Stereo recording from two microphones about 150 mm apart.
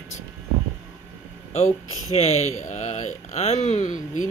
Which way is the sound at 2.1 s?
45° left (ahead or behind).